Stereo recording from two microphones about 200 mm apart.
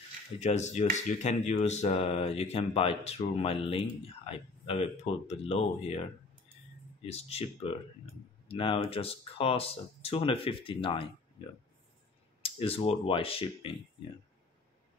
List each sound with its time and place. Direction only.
0.4 s speech: 35° left (ahead or behind)
12.4 s speech: 30° left (ahead or behind)